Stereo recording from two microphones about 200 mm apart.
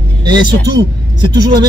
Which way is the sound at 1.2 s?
20° right (ahead or behind).